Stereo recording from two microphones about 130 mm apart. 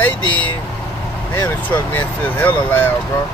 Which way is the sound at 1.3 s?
15° left (ahead or behind).